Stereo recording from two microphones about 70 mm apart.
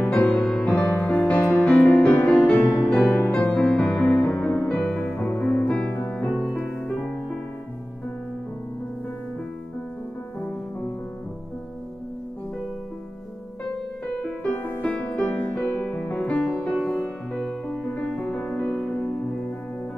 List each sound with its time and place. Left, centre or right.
0.3 s music: centre
0.7 s music: left
3.5 s music: centre; by 4.3 s left
4.3 s music: centre
14.1 s music: centre